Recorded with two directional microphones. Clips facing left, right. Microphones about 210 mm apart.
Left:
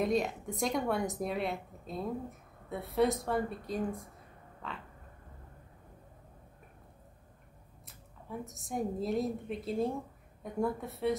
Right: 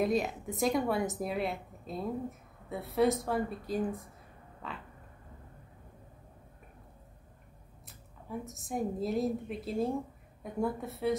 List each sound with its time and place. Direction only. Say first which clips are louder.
0.0 s a woman's voice: right 1 dB; centre (ahead or behind)
7.8 s a woman's voice: right 1 dB; centre (ahead or behind)